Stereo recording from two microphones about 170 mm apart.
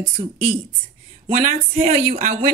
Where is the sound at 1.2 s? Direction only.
45° right (ahead or behind).